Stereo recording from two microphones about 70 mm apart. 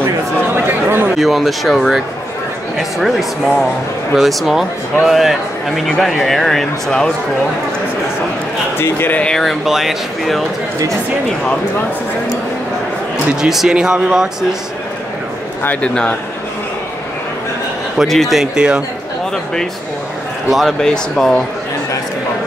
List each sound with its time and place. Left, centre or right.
0.6 s chatter: right
1.2 s speech: centre
8.7 s speech: left
9.1 s speech: centre
9.4 s speech: centre
13.3 s speech: centre
15.6 s speech: centre
17.9 s speech: centre
18.4 s speech: centre
20.4 s speech: centre
20.8 s speech: centre